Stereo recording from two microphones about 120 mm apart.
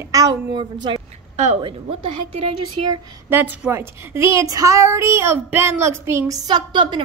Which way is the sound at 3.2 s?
15° right (ahead or behind).